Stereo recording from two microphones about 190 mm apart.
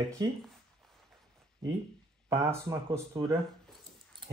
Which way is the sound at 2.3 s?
15° right (ahead or behind).